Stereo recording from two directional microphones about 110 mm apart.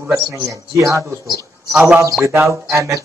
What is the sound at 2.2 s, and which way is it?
Speech, 25° right (ahead or behind).